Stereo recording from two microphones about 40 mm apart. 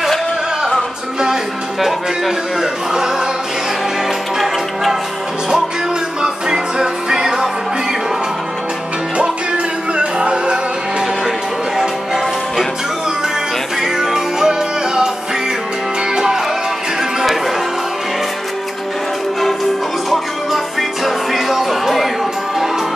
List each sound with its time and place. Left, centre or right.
1.2 s music: centre
6.2 s music: centre
9.9 s music: right
11.2 s music: centre
13.9 s music: centre
20.1 s music: centre